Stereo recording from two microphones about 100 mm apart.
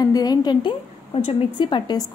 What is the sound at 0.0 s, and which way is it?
A woman's voice, 40° left (ahead or behind).